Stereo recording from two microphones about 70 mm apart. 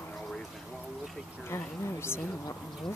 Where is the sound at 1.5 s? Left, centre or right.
Left.